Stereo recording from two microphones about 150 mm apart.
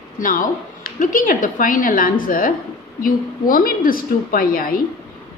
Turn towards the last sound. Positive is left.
turn(degrees=70)  # may be behind; listen again after turning